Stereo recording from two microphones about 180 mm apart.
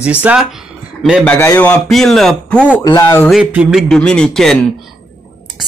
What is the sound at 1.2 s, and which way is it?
Speech, 10° left (ahead or behind).